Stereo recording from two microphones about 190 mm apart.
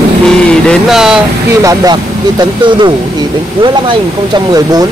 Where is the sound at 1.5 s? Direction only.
15° right (ahead or behind).